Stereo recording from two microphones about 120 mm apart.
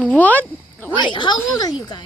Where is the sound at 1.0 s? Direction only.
40° left (ahead or behind).